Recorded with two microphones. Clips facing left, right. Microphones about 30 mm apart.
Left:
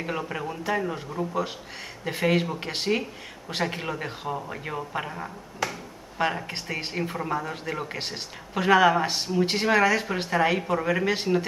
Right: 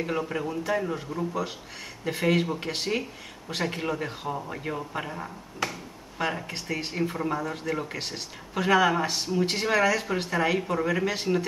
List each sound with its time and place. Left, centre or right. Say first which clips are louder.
0.0 s speech: right 1 dB; centre